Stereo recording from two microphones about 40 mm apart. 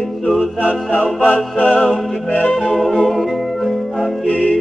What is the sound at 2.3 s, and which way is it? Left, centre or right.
Music, left.